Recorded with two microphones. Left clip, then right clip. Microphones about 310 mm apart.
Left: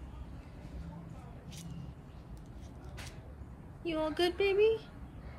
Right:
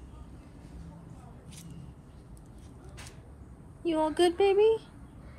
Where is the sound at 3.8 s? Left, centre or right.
Centre.